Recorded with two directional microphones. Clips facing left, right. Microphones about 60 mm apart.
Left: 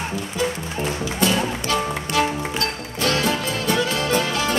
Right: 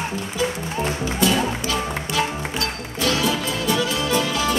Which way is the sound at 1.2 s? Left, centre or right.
Left.